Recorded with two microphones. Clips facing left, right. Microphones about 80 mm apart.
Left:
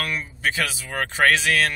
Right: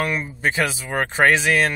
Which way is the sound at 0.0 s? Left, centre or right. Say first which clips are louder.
Right 4 dB; right.